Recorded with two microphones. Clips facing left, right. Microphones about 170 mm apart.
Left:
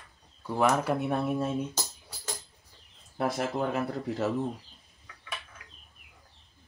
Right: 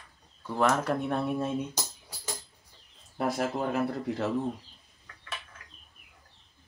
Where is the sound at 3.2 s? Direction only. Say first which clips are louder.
Even; centre (ahead or behind).